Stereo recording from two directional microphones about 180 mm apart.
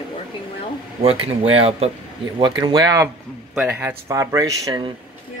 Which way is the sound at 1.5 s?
35° right (ahead or behind).